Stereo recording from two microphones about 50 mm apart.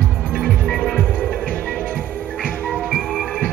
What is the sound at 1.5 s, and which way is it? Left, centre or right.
Music, left.